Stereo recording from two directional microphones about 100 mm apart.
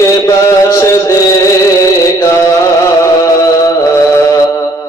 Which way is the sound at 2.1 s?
30° left (ahead or behind).